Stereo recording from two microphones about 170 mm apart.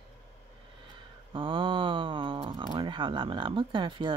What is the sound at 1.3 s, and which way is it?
Speech, 30° right (ahead or behind).